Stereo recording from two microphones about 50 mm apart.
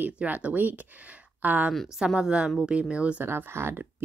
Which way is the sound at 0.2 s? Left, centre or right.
Right.